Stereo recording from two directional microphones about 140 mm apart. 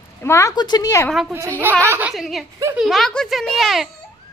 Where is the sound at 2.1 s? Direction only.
Centre (ahead or behind).